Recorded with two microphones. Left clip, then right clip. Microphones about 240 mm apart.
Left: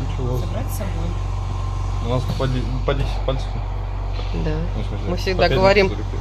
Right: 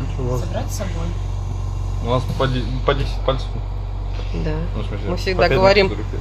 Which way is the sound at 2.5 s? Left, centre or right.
Right.